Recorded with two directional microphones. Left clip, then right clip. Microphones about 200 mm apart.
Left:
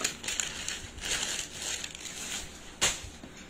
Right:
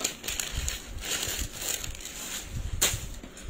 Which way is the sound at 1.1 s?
25° right (ahead or behind).